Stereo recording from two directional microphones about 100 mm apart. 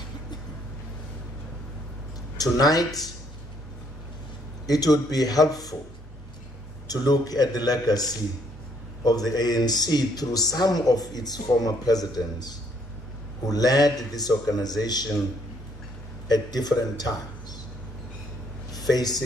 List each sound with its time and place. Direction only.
2.3 s speech: 40° left (ahead or behind)
4.6 s speech: 40° left (ahead or behind)
6.9 s speech: 40° left (ahead or behind)
16.3 s a man's voice: 40° left (ahead or behind)
18.7 s speech: 40° left (ahead or behind)